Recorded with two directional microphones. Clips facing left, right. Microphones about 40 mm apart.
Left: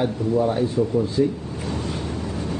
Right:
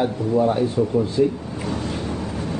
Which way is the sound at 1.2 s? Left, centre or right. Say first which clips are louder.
Right 2 dB; right.